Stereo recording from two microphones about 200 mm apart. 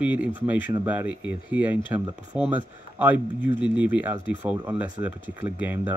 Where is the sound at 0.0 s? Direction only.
10° right (ahead or behind).